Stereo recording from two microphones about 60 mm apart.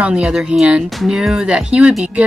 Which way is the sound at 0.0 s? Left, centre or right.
Centre.